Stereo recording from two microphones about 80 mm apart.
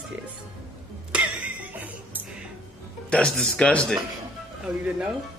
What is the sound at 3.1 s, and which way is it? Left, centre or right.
Speech, centre.